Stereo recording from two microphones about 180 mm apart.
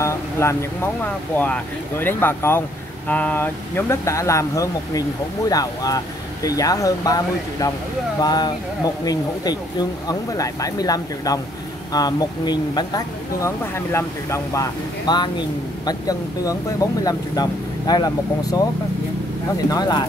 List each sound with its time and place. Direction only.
0.0 s speech: 15° left (ahead or behind)
19.7 s speech: 20° left (ahead or behind)